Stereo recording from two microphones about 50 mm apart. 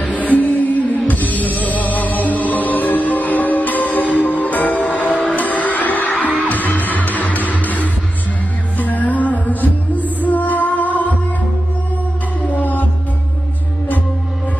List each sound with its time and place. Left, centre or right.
0.3 s music: left
12.5 s music: left